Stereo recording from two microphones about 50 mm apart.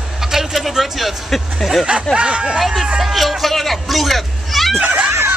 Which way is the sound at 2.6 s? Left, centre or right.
Centre.